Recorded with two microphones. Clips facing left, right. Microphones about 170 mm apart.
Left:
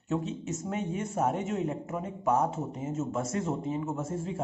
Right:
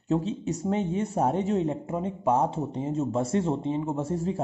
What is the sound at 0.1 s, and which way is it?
Speech, 35° right (ahead or behind).